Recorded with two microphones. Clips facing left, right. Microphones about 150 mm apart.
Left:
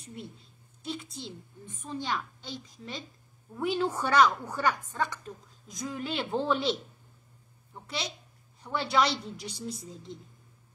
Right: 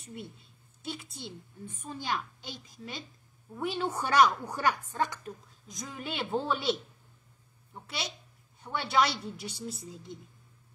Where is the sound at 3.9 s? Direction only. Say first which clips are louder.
Right 1 dB; 10° right (ahead or behind).